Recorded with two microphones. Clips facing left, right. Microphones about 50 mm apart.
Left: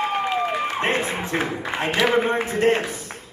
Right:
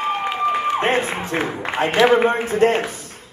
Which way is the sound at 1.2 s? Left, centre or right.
Right.